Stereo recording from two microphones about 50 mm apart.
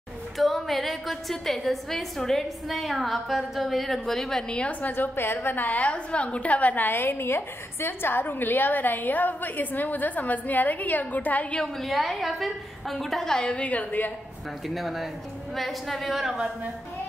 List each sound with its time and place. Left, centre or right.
0.4 s a woman's voice: centre
4.9 s a woman's voice: left
6.9 s a woman's voice: left
11.8 s a woman's voice: centre
13.4 s a woman's voice: left
14.7 s a woman's voice: centre